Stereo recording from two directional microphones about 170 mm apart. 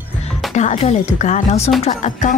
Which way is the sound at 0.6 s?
40° left (ahead or behind).